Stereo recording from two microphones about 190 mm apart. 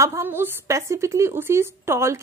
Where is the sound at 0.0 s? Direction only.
15° right (ahead or behind).